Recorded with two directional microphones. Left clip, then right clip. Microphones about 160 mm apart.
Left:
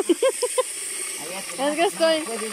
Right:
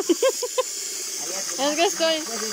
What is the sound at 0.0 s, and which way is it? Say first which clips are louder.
Speech: left 1 dB; 10° left (ahead or behind).